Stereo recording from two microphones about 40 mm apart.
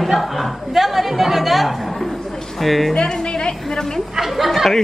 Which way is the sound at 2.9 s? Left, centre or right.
Centre.